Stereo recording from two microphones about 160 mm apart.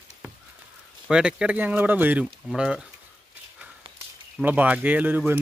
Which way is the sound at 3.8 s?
35° right (ahead or behind).